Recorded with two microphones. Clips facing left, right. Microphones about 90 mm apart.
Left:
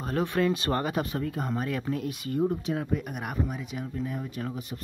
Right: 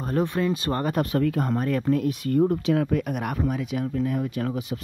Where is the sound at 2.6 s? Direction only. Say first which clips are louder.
Right 7 dB; 75° right (ahead or behind).